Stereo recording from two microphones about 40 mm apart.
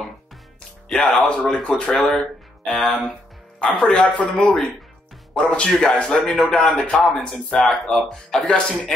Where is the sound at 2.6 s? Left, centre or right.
Centre.